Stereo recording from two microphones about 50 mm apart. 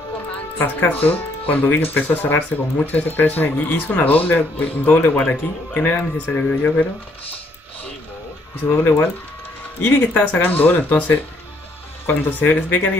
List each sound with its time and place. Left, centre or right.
0.6 s speech: left
8.7 s speech: left
12.1 s speech: left